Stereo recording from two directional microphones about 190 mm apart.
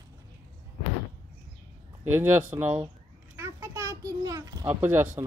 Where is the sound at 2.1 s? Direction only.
15° right (ahead or behind).